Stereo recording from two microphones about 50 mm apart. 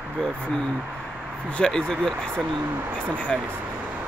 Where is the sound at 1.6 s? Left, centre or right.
Centre.